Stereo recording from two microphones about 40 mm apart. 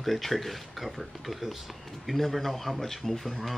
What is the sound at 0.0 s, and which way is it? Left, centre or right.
Speech, centre.